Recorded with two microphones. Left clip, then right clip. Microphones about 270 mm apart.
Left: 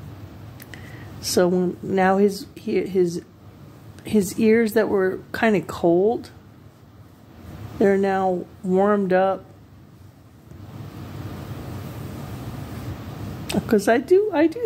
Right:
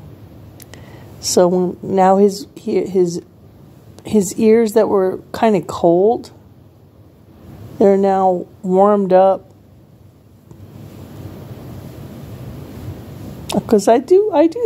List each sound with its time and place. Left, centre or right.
1.2 s a woman's voice: centre
7.8 s a woman's voice: centre
13.5 s speech: centre